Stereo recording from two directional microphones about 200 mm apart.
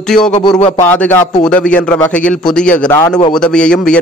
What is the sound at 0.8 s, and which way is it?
A man's voice, 10° left (ahead or behind).